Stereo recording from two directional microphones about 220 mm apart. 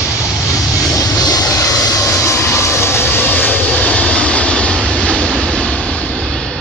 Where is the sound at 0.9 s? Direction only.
15° left (ahead or behind).